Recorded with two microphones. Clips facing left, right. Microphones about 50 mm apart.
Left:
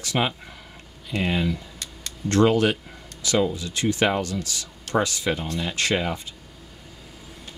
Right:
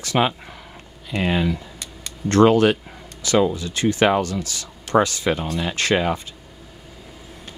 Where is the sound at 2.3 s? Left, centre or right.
Right.